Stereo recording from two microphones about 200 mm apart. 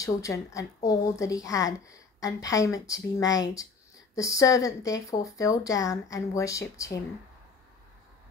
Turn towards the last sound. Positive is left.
turn(degrees=15)  # may be behind; listen again after turning